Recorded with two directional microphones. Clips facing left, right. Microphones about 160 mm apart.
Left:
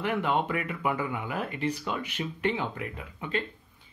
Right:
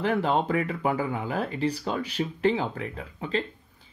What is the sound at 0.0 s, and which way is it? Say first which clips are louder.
Speech: right 3 dB; 35° right (ahead or behind).